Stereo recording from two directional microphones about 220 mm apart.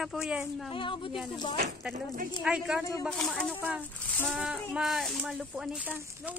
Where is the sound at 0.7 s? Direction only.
20° left (ahead or behind).